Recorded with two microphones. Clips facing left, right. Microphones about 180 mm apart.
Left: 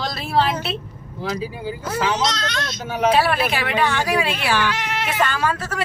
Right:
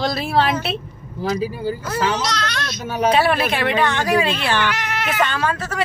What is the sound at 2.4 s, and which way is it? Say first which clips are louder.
Baby cry: even; 20° left (ahead or behind).